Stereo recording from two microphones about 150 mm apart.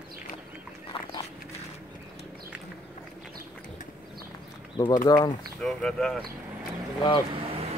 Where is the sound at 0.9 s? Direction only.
40° left (ahead or behind).